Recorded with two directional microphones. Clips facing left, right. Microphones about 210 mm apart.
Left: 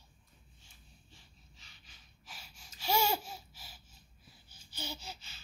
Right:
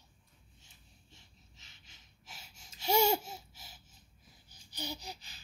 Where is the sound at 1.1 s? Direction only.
20° right (ahead or behind).